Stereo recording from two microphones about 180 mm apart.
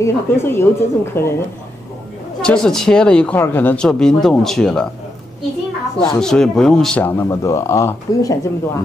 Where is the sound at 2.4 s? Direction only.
5° left (ahead or behind).